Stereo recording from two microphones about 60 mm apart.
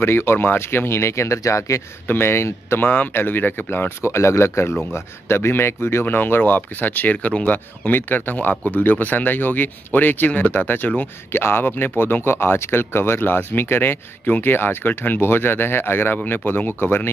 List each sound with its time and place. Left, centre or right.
0.0 s speech: left
2.0 s speech: left
4.0 s speech: left
6.0 s speech: left